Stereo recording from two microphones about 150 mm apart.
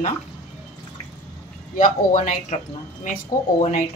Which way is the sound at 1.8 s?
60° left (ahead or behind).